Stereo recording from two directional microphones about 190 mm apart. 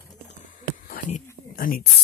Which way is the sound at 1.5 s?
50° left (ahead or behind).